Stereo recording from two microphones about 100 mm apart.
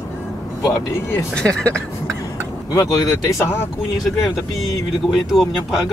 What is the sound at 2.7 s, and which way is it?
Speech, 35° left (ahead or behind).